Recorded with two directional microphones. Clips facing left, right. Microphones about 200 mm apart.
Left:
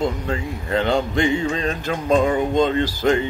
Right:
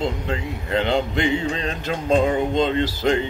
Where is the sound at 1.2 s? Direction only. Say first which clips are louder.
Left 2 dB; 45° left (ahead or behind).